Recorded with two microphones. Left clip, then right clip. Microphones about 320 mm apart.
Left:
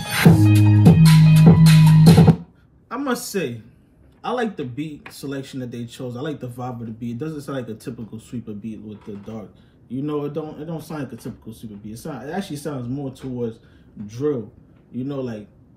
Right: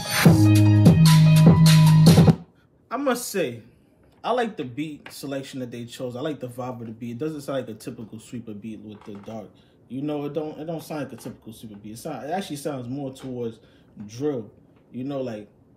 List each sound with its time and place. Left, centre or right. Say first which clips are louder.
0.0 s music: left 2 dB; centre
2.9 s a man's voice: even; centre
10.1 s speech: left 2 dB; centre